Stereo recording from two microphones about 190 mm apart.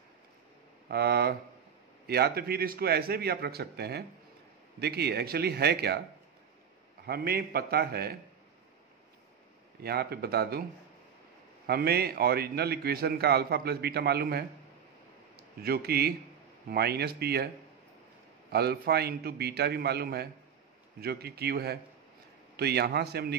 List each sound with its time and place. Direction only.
0.8 s a man's voice: 55° right (ahead or behind)
7.1 s a man's voice: 55° right (ahead or behind)
9.8 s a man's voice: 55° right (ahead or behind)
11.6 s a man's voice: 55° right (ahead or behind)
15.6 s a man's voice: 55° right (ahead or behind)
18.5 s a man's voice: 55° right (ahead or behind)